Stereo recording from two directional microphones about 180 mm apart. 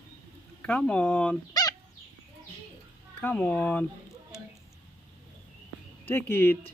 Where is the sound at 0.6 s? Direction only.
5° left (ahead or behind).